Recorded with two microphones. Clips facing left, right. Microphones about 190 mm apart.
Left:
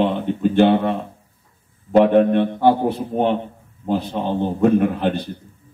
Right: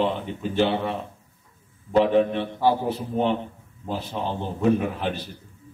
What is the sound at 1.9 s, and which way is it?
Speech, 55° left (ahead or behind).